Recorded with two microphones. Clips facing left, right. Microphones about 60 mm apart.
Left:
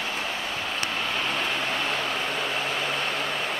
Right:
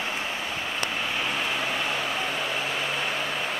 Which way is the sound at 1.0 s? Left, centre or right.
Centre.